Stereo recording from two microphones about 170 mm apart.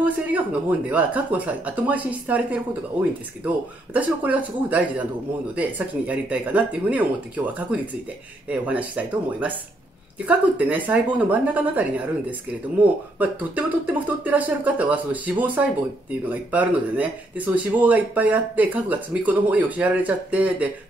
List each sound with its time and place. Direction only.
0.0 s speech: 10° right (ahead or behind)